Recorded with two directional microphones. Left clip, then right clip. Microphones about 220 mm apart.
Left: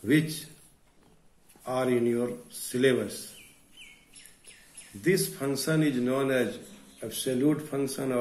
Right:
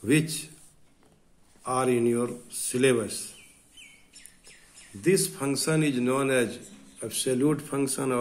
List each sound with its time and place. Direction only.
0.0 s a man's voice: 40° right (ahead or behind)
1.6 s a man's voice: 35° right (ahead or behind)
5.3 s a man's voice: 35° right (ahead or behind)